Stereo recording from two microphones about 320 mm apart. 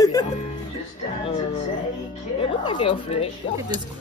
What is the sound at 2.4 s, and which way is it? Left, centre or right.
Speech, centre.